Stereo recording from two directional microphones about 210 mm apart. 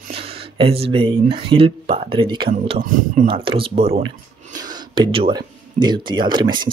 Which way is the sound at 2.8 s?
40° right (ahead or behind).